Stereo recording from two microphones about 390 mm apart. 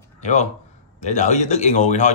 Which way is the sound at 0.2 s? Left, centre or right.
Centre.